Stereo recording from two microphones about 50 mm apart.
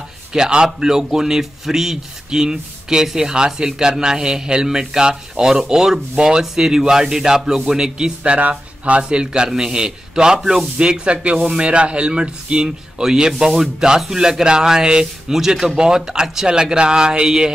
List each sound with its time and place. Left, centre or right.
0.3 s a man's voice: centre